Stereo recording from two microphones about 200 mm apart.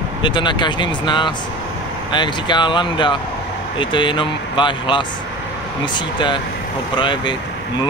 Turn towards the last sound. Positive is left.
turn(degrees=25)  # may be behind; listen again after turning